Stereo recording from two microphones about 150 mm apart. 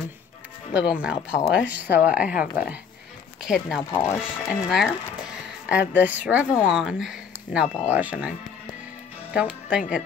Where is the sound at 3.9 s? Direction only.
15° left (ahead or behind).